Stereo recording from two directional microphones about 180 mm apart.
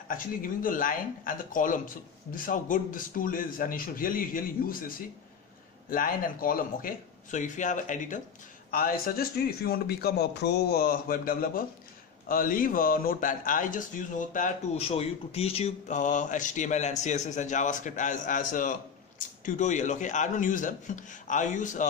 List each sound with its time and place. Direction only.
0.1 s a man's voice: 50° left (ahead or behind)
14.8 s speech: 35° left (ahead or behind)